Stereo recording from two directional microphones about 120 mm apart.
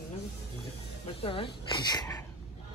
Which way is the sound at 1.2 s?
50° left (ahead or behind).